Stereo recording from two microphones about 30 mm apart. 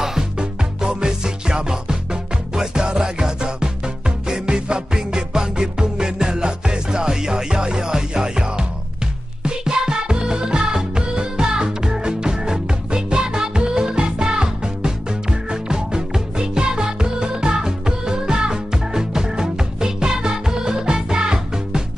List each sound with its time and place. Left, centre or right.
0.4 s music: right